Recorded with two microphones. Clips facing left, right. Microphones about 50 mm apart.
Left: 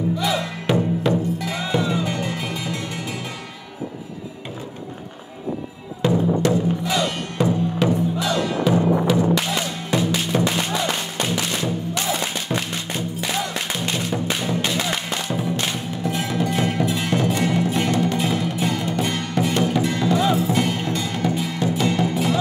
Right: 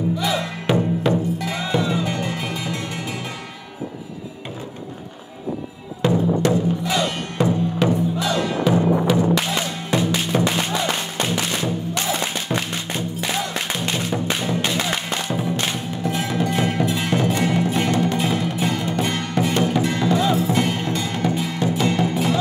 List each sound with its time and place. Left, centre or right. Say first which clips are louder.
0.7 s music: right 1 dB; right
6.0 s music: even; right